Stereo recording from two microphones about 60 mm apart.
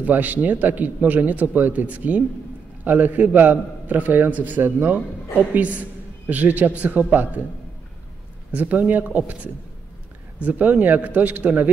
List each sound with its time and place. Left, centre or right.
0.0 s a man's voice: right
8.5 s a man's voice: right